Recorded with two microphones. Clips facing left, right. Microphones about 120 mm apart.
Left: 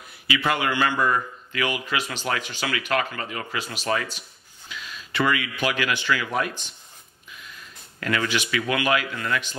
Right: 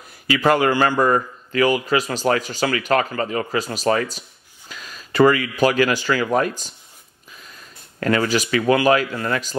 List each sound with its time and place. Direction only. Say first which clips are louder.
0.3 s a man's voice: right 7 dB; 40° right (ahead or behind)